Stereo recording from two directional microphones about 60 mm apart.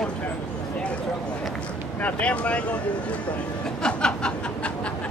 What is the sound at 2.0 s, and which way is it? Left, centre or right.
Speech, left.